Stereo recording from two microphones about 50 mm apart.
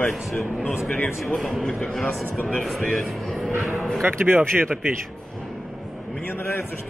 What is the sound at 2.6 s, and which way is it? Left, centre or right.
Speech, centre.